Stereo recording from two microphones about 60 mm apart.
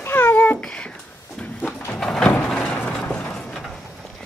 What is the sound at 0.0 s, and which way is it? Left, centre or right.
Cat, left.